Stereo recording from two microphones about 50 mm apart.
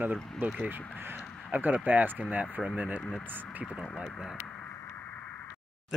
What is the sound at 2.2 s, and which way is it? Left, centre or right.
Speech, right.